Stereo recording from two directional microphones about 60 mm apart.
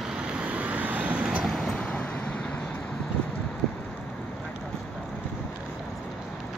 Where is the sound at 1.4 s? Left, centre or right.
Centre.